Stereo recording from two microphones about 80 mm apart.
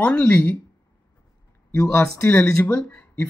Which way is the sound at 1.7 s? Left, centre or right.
Left.